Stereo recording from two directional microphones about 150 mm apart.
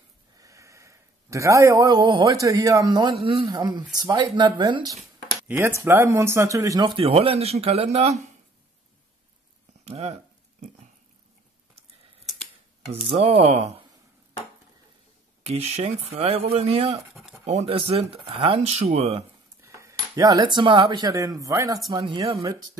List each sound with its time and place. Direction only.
0.4 s a sound: 20° right (ahead or behind)
2.4 s speech: 20° right (ahead or behind)
3.2 s speech: 40° right (ahead or behind)
5.5 s speech: 15° right (ahead or behind)
7.0 s speech: 40° right (ahead or behind)
9.8 s a sound: 45° right (ahead or behind)
12.9 s speech: 45° right (ahead or behind)
15.4 s speech: 45° right (ahead or behind)
19.6 s cutlery: 20° right (ahead or behind)
21.9 s speech: 30° right (ahead or behind)